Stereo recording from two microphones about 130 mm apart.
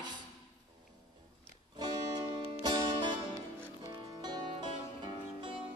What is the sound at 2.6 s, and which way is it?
Music, 35° right (ahead or behind).